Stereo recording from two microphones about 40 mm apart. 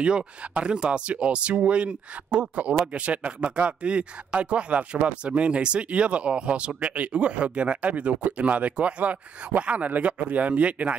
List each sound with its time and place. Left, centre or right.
0.0 s speech: right